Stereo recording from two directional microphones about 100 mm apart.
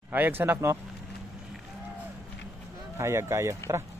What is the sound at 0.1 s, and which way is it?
Speech, 20° right (ahead or behind).